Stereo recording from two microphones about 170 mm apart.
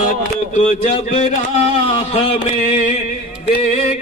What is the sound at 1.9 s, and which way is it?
Speech, 35° left (ahead or behind).